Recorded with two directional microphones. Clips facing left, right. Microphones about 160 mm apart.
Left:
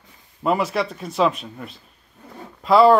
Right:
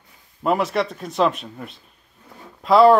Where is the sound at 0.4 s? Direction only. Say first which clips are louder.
Right 1 dB; centre (ahead or behind).